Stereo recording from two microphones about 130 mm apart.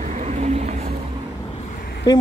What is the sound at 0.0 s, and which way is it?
Vehicle, 65° right (ahead or behind).